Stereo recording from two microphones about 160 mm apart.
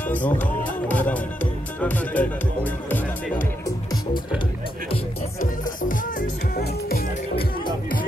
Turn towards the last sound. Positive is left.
turn(degrees=70)  # may be behind; listen again after turning